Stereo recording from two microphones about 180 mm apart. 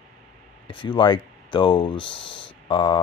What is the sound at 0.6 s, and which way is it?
Speech, 25° left (ahead or behind).